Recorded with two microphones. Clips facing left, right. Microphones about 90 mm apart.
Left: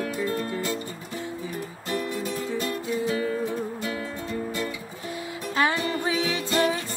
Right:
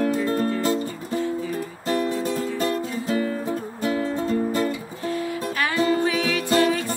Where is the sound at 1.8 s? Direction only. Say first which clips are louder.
Right 6 dB; 40° right (ahead or behind).